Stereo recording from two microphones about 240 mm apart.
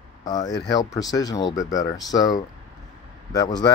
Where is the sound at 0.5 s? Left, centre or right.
Left.